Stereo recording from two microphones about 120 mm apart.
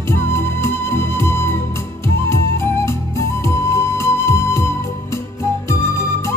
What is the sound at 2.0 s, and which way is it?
Flute, 20° left (ahead or behind).